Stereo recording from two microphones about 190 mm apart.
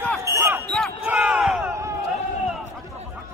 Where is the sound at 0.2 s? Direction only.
15° right (ahead or behind).